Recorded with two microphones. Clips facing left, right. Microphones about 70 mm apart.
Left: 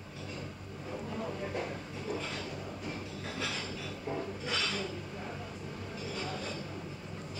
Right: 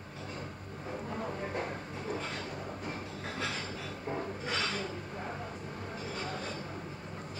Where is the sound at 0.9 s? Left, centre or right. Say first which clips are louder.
Even; right.